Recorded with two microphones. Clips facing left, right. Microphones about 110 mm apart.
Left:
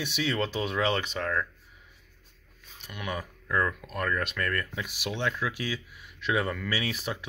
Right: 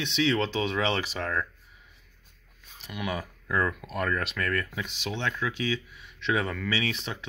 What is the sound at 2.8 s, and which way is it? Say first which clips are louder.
Speech: right 2 dB; 5° right (ahead or behind).